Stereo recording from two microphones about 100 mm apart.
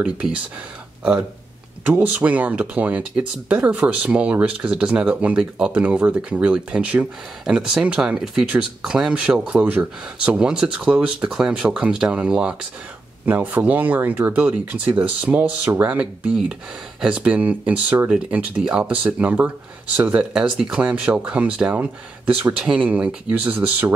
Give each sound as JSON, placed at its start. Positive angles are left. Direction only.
{"t": 0.0, "sound": "speech", "side_deg": -10}
{"t": 1.9, "sound": "speech", "side_deg": -15}